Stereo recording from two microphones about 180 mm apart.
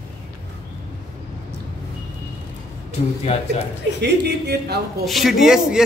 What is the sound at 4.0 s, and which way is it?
Speech, 70° right (ahead or behind).